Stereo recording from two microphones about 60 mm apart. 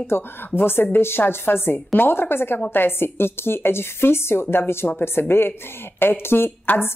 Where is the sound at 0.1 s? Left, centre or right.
Left.